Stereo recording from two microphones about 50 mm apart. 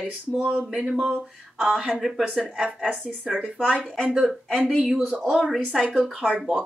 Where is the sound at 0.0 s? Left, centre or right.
Centre.